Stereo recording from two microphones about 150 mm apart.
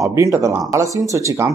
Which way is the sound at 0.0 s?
20° right (ahead or behind).